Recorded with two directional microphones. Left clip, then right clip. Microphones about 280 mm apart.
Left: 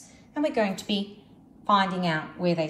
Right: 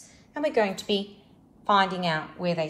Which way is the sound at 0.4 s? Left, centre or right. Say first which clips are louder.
Right 1 dB; centre.